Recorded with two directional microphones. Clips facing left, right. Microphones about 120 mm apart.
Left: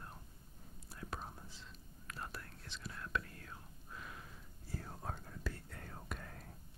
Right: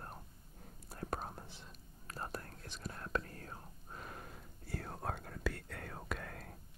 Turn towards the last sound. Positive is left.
turn(degrees=-80)